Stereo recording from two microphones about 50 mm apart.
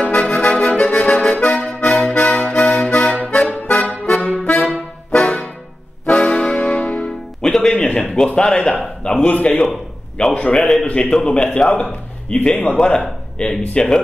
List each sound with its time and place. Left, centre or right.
0.0 s music: left
7.1 s music: centre
7.7 s a sound: left
8.4 s a man's voice: centre
9.3 s a man's voice: left
10.2 s speech: centre
10.9 s a man's voice: left